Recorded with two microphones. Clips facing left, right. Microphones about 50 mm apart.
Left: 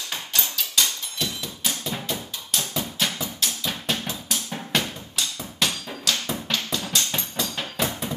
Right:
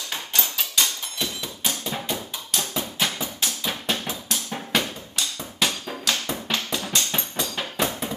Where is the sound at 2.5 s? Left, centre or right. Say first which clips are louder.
Even; centre.